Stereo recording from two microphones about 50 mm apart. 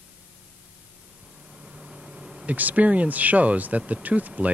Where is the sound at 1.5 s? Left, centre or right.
Centre.